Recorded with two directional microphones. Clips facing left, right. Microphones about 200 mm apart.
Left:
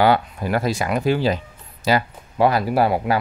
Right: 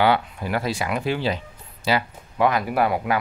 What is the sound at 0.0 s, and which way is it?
Speech, 40° left (ahead or behind).